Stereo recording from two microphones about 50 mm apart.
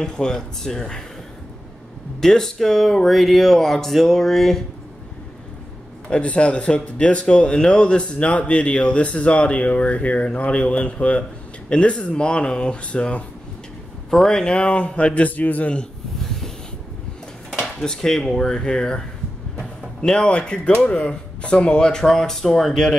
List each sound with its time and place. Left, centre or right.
0.0 s speech: centre
2.1 s speech: centre
6.0 s speech: left
14.1 s speech: centre; by 15.7 s left
17.8 s speech: centre